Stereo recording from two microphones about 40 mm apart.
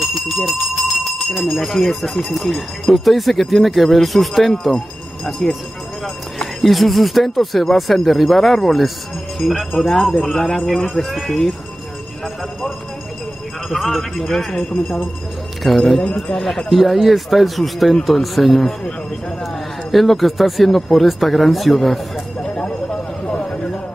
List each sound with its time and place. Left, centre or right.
1.0 s speech: centre
6.0 s a man's voice: centre
13.7 s a man's voice: centre
15.6 s speech: centre
22.4 s vehicle: left